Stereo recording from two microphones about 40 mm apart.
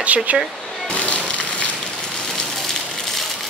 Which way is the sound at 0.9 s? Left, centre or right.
Left.